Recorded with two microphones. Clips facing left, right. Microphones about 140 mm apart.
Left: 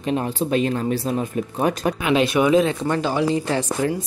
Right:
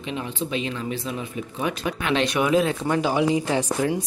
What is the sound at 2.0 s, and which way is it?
Speech, 5° left (ahead or behind).